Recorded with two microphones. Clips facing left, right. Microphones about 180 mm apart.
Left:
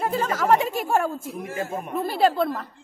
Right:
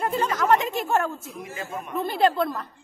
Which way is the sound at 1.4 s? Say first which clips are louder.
Left 5 dB; 50° left (ahead or behind).